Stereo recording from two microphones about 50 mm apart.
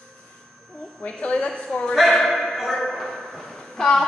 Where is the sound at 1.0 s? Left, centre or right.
Left.